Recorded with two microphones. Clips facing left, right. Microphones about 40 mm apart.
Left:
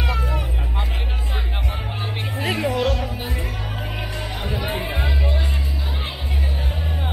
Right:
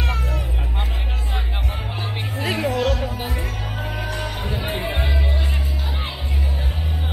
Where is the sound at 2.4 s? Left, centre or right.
Left.